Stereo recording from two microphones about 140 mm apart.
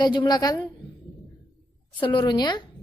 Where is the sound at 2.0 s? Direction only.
35° left (ahead or behind).